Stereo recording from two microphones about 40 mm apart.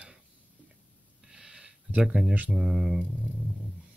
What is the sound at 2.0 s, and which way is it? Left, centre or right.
Speech, right.